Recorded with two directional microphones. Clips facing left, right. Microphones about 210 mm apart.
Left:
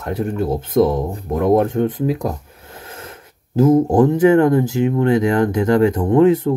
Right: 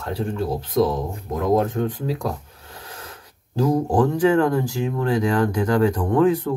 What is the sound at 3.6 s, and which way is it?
Speech, 20° left (ahead or behind).